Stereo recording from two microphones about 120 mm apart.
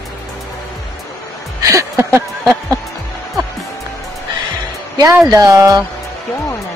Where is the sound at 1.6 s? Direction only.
25° right (ahead or behind).